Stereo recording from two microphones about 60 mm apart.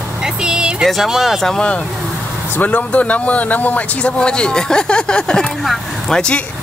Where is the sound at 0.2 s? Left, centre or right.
Centre.